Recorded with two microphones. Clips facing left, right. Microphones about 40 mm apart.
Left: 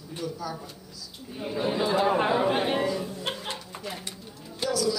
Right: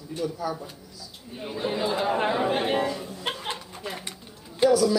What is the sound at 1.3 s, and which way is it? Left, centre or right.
Speech, centre.